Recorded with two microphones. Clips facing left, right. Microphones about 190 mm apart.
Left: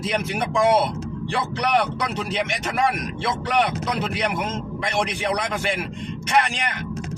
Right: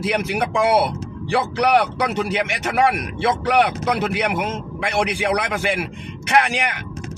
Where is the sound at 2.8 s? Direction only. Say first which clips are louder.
Right 5 dB; 70° right (ahead or behind).